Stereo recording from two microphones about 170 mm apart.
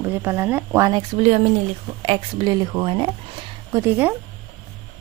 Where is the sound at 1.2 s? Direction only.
45° right (ahead or behind).